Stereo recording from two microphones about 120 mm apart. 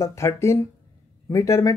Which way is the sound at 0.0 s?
25° left (ahead or behind).